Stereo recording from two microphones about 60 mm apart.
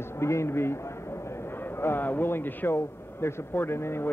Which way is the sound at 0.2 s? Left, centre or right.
Left.